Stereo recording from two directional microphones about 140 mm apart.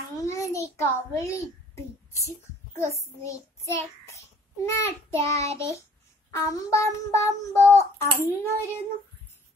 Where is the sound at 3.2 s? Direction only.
20° left (ahead or behind).